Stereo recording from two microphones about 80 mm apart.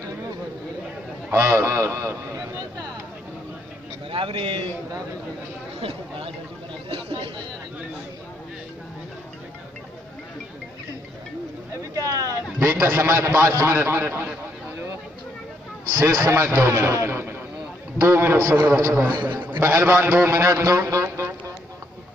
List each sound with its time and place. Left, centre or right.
1.3 s a man's voice: right
4.1 s a man's voice: right
11.9 s a sound: right
12.8 s a man's voice: right
16.0 s a man's voice: right
18.4 s a man's voice: right
19.2 s a man's voice: right